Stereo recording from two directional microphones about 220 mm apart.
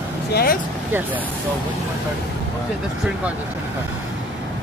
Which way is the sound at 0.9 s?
5° right (ahead or behind).